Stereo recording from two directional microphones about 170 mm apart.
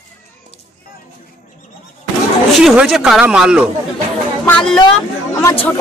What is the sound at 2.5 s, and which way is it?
Speech, centre (ahead or behind).